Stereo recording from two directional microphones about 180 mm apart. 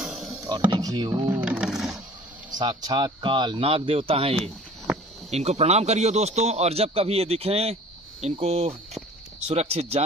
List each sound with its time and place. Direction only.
0.0 s music: 5° right (ahead or behind)
0.7 s speech: 20° right (ahead or behind)
1.3 s coin: 10° right (ahead or behind)
2.5 s speech: 25° right (ahead or behind)